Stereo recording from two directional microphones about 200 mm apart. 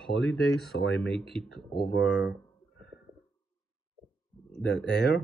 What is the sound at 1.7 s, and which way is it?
Speech, 55° left (ahead or behind).